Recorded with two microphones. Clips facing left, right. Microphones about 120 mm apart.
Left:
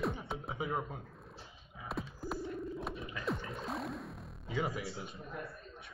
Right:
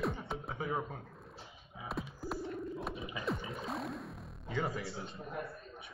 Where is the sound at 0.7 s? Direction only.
5° left (ahead or behind).